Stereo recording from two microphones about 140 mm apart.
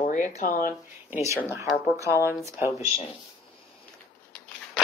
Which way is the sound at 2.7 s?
45° left (ahead or behind).